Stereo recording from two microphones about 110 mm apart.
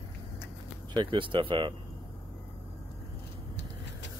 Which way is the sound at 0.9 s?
50° right (ahead or behind).